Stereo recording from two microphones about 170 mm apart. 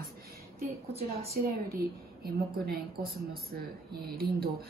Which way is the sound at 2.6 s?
70° right (ahead or behind).